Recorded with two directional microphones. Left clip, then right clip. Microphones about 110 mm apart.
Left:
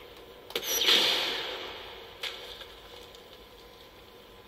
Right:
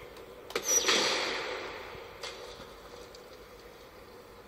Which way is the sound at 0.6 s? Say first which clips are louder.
Left 3 dB; 35° left (ahead or behind).